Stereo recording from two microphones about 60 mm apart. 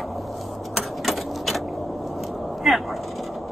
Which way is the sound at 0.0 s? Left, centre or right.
Centre.